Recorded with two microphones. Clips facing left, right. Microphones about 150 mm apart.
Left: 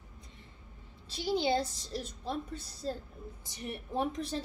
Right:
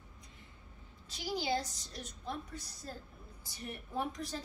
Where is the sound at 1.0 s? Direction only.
25° left (ahead or behind).